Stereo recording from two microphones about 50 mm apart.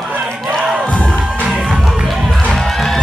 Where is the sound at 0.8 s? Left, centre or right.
Left.